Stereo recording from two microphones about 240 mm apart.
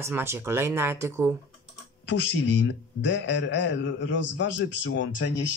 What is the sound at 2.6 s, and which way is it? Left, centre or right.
Speech, left.